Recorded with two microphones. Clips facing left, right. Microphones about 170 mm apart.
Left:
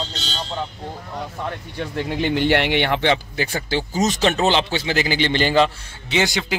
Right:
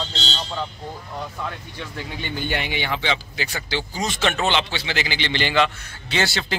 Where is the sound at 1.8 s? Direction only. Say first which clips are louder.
Left 11 dB; 65° left (ahead or behind); by 5.7 s 40° left (ahead or behind).